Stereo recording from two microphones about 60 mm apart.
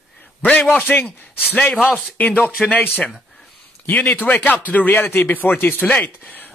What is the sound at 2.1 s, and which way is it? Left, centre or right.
A man's voice, left.